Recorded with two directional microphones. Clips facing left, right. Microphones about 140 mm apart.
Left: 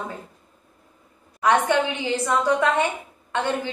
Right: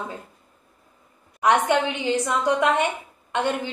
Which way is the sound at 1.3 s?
20° right (ahead or behind).